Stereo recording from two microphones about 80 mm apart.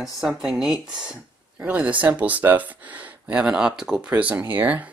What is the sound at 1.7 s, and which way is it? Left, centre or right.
Speech, centre.